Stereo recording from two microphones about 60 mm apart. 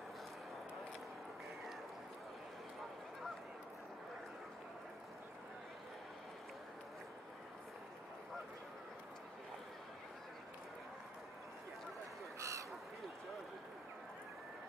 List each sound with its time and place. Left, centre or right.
12.4 s crow: right